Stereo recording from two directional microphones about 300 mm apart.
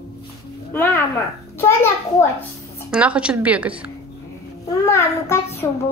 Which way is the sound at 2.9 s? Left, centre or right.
Centre.